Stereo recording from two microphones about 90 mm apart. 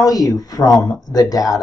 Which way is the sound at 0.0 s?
40° left (ahead or behind).